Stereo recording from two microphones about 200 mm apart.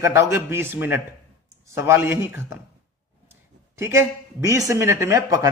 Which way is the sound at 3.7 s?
10° right (ahead or behind).